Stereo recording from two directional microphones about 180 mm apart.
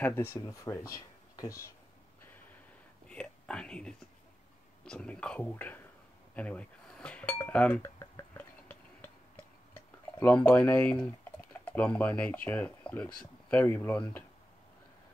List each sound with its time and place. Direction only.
0.0 s speech: 10° left (ahead or behind)
3.1 s a man's voice: 5° left (ahead or behind)
6.3 s dishes: 5° left (ahead or behind)
7.4 s speech: 5° left (ahead or behind)
8.4 s a sound: 10° left (ahead or behind)
9.8 s speech: 10° left (ahead or behind)